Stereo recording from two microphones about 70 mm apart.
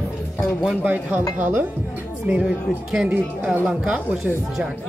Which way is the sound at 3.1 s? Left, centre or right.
Right.